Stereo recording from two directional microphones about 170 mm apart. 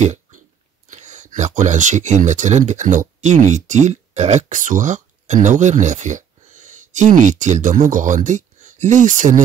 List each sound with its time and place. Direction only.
0.0 s chewing: 45° right (ahead or behind)
0.8 s speech: 45° right (ahead or behind)